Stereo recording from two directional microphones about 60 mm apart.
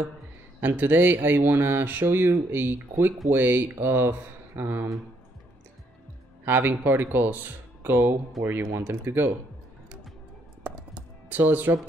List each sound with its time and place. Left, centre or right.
0.6 s speech: right
6.4 s speech: right
8.4 s speech: centre
8.8 s speech: right
11.0 s music: right